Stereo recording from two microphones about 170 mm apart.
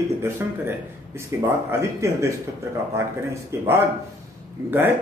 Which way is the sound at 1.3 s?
15° right (ahead or behind).